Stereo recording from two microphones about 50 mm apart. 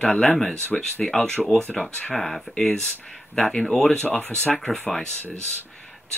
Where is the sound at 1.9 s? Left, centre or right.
Left.